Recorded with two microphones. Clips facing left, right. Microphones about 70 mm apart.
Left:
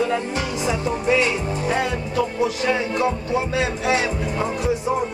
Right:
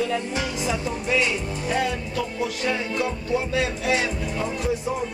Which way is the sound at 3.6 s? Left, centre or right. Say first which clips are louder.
Left 3 dB; centre.